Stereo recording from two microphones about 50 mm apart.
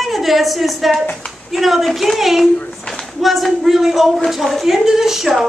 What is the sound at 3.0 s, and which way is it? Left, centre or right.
A woman's voice, centre.